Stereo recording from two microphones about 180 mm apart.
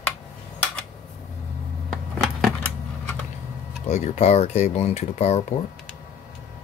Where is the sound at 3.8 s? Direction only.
40° left (ahead or behind).